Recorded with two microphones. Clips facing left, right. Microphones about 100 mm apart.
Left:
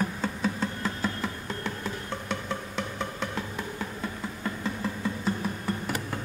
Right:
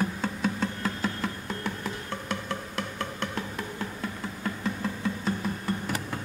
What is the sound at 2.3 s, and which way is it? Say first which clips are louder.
Music: even; centre (ahead or behind).